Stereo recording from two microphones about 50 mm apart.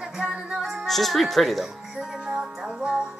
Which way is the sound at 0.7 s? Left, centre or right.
Centre.